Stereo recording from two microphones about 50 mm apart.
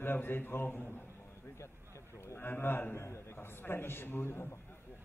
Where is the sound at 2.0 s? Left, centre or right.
Left.